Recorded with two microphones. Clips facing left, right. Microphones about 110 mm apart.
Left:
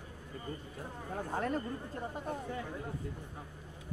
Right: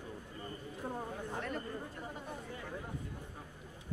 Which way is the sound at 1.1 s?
40° left (ahead or behind).